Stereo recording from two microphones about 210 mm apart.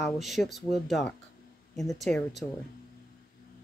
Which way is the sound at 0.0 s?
Centre (ahead or behind).